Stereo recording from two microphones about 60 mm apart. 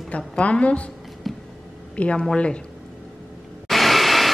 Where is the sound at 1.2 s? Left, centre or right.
Centre.